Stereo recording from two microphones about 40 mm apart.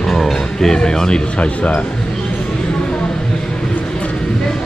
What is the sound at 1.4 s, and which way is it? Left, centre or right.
Speech, left.